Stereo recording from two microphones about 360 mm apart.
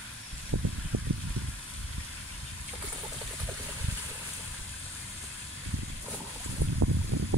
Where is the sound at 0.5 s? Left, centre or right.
Right.